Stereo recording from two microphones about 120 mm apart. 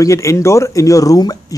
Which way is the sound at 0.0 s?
25° left (ahead or behind).